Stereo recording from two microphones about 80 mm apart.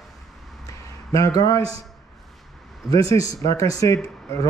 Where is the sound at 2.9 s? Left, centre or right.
Left.